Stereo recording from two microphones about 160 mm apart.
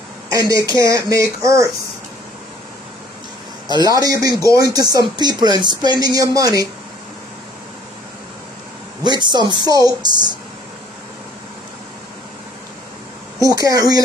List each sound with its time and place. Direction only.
0.3 s speech: 20° right (ahead or behind)
3.6 s speech: 25° right (ahead or behind)
9.0 s speech: 30° right (ahead or behind)
13.4 s speech: 20° right (ahead or behind)